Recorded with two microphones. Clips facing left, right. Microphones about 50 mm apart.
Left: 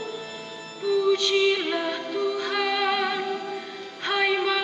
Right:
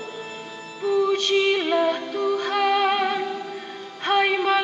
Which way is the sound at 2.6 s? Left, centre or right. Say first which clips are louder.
Right 4 dB; right.